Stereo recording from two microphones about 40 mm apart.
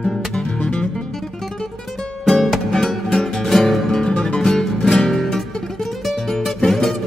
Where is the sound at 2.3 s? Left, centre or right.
Centre.